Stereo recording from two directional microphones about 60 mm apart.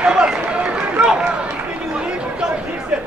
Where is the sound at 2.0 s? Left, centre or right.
Centre.